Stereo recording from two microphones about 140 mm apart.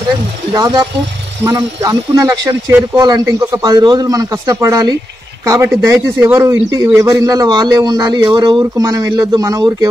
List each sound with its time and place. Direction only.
0.5 s a man's voice: 30° right (ahead or behind)